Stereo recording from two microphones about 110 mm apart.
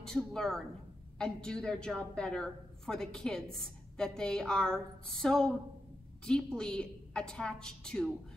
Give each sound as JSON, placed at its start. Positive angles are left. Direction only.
{"t": 0.0, "sound": "a woman's voice", "side_deg": 5}